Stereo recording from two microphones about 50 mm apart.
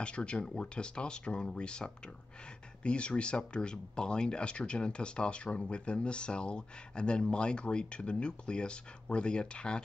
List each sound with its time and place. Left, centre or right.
0.0 s speech: left